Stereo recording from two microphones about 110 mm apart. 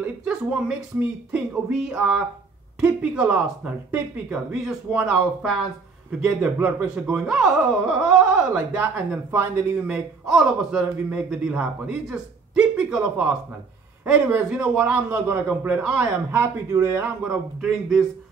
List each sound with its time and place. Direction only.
0.0 s a sound: 10° right (ahead or behind)
0.9 s a man's voice: 10° right (ahead or behind)
9.8 s a man's voice: 5° right (ahead or behind)
16.3 s speech: 20° right (ahead or behind)
17.2 s speech: 5° right (ahead or behind)